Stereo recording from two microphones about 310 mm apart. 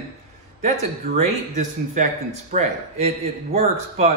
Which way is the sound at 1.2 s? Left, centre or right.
Right.